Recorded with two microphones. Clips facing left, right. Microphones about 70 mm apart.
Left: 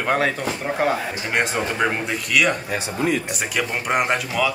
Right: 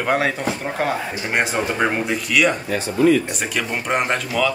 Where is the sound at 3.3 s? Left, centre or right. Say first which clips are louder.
Even; centre.